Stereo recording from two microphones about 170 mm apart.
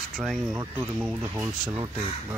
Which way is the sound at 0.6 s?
15° right (ahead or behind).